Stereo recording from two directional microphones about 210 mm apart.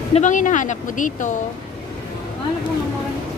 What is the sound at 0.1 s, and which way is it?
Speech, 35° left (ahead or behind).